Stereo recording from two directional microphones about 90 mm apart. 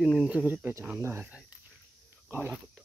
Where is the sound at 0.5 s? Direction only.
20° right (ahead or behind).